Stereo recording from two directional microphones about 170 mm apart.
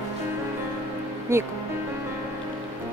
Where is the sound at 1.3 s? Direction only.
15° right (ahead or behind).